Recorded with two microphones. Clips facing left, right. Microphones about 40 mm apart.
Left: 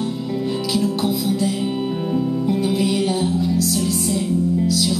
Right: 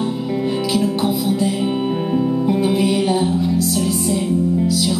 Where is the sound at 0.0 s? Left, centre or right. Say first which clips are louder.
Right 3 dB; centre.